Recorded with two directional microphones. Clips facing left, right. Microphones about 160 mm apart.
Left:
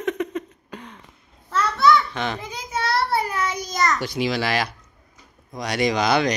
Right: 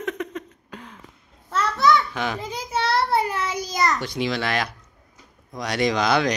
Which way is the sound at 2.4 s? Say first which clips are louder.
Right 2 dB; 30° right (ahead or behind).